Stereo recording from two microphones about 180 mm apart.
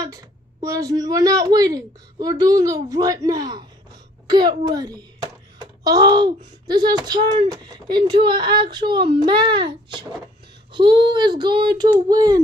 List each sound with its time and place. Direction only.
0.0 s a child's voice: 20° right (ahead or behind)